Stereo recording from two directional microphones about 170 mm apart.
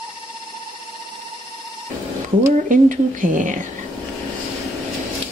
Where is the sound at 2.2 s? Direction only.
50° right (ahead or behind).